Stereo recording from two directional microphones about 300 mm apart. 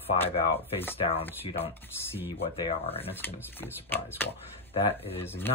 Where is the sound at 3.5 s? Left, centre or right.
Centre.